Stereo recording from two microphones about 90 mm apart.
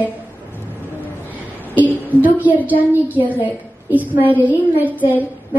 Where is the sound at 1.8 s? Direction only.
20° right (ahead or behind).